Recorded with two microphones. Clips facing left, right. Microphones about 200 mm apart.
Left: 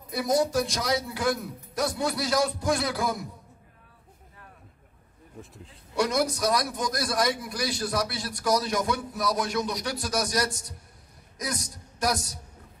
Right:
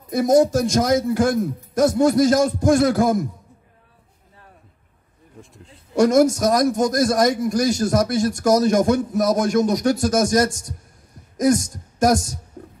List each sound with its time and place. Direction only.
0.1 s a man's voice: 45° right (ahead or behind)
5.4 s speech: centre (ahead or behind)
5.9 s a man's voice: 45° right (ahead or behind)
12.6 s a sound: 50° right (ahead or behind)